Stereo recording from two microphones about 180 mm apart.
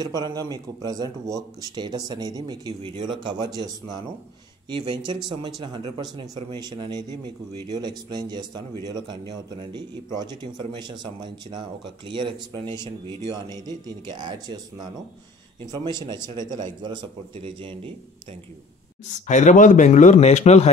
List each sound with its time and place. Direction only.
0.0 s speech: 20° right (ahead or behind)
19.2 s a man's voice: 45° left (ahead or behind)